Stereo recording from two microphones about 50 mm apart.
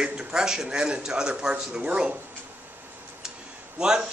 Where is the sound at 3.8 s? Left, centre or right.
Centre.